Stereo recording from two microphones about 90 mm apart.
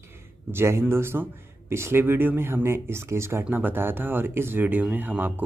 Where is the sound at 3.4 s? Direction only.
20° right (ahead or behind).